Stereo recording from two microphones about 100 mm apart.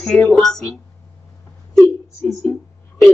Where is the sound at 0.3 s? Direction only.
5° left (ahead or behind).